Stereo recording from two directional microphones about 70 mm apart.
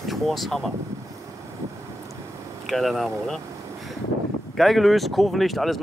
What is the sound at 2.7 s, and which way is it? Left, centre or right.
Speech, centre.